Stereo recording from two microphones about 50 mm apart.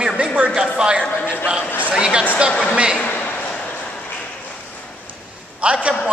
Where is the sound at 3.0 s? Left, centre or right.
Left.